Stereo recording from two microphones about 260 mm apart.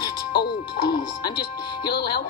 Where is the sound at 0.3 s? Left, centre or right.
Left.